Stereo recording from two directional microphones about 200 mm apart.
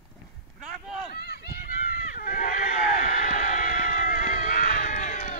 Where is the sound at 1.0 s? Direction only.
55° left (ahead or behind).